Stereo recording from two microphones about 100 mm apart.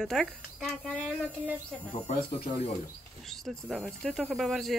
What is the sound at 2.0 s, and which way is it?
Speech, 80° left.